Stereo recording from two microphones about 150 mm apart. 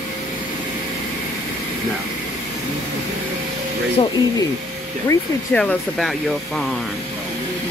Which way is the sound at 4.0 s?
35° left (ahead or behind).